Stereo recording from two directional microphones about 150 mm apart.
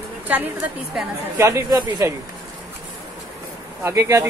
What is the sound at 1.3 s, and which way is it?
Speech, 20° right (ahead or behind).